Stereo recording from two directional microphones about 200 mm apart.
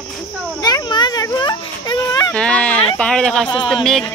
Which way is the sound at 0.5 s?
20° left (ahead or behind).